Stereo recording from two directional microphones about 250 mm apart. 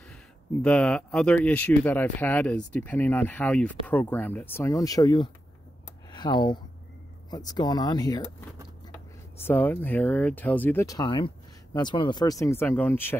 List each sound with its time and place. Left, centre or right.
0.1 s speech: centre